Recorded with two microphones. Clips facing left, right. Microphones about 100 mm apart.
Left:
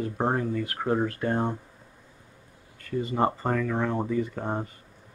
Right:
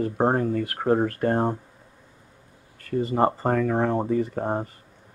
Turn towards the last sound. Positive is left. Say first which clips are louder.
# right 4 dB
turn(degrees=-35)  # may be behind; listen again after turning